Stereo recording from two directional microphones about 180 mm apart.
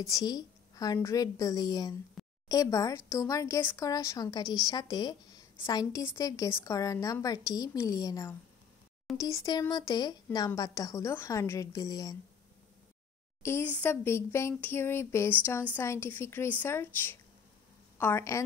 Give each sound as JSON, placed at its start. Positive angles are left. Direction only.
{"t": 0.0, "sound": "a woman's voice", "side_deg": 20}
{"t": 13.4, "sound": "a woman's voice", "side_deg": 15}